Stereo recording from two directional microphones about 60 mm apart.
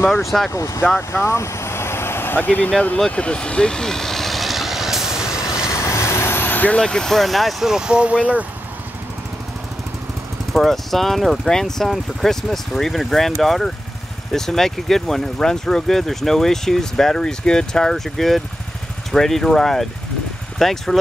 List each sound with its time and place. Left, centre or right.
0.5 s speech: left
1.2 s vehicle: left; by 5.7 s centre
5.8 s vehicle: left
6.8 s speech: centre
7.7 s speech: centre
10.5 s speech: centre